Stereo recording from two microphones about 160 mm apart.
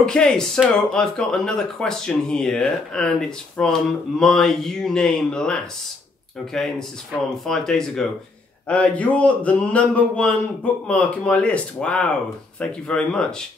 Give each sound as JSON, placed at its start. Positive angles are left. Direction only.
{"t": 0.0, "sound": "speech", "side_deg": 5}
{"t": 7.4, "sound": "a man's voice", "side_deg": 5}